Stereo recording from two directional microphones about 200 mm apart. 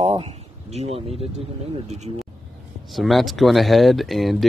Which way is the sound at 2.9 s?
Centre (ahead or behind).